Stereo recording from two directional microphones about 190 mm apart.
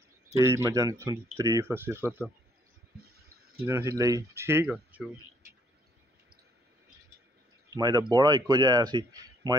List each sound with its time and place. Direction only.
0.4 s speech: 15° right (ahead or behind)
3.6 s speech: 15° right (ahead or behind)
7.7 s speech: 20° right (ahead or behind)